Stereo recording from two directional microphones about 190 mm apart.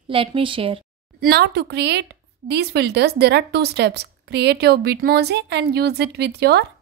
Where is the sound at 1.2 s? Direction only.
60° right (ahead or behind).